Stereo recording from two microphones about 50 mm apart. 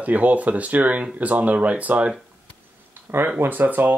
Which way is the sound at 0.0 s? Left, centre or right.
Right.